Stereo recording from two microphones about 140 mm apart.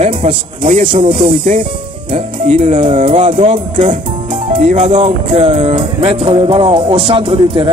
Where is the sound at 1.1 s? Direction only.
70° right (ahead or behind).